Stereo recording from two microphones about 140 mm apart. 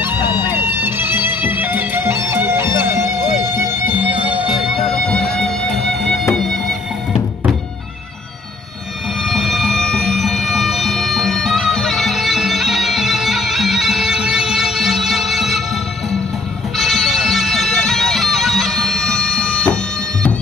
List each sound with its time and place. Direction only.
0.0 s music: 15° right (ahead or behind)
5.4 s music: 5° left (ahead or behind)
9.2 s emergency vehicle: centre (ahead or behind)
16.7 s bagpipes: centre (ahead or behind)